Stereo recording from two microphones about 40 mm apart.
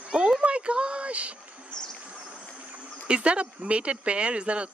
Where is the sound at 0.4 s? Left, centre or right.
Right.